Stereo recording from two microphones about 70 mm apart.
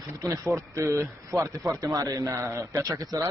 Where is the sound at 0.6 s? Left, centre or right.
Right.